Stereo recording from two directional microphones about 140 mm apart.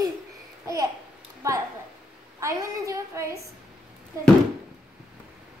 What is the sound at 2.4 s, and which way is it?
A woman's voice, 20° right (ahead or behind).